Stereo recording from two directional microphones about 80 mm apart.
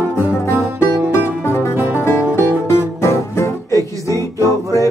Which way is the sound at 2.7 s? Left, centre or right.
Left.